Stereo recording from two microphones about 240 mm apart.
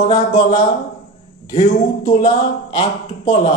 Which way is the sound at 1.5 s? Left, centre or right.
Left.